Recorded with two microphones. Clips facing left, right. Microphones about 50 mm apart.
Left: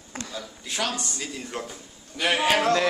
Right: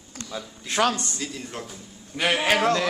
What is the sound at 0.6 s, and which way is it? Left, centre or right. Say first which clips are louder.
Speech: right 7 dB; right.